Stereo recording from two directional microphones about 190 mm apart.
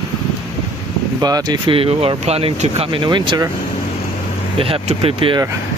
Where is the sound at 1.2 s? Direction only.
20° right (ahead or behind).